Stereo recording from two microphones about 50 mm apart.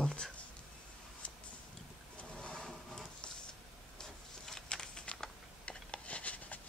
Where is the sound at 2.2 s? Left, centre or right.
Left.